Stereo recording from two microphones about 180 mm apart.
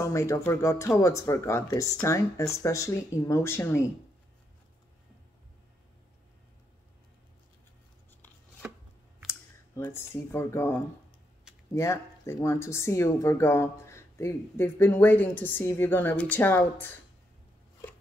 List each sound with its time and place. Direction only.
0.0 s speech: 15° left (ahead or behind)
9.8 s speech: 15° left (ahead or behind)